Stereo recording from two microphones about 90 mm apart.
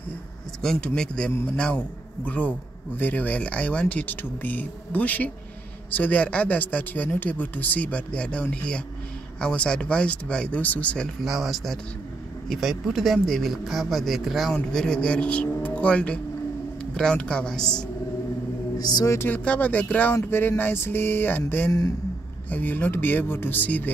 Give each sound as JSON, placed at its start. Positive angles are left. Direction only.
{"t": 0.6, "sound": "speech", "side_deg": 10}
{"t": 11.2, "sound": "speech", "side_deg": 0}
{"t": 18.8, "sound": "speech", "side_deg": 50}
{"t": 19.2, "sound": "speech", "side_deg": 15}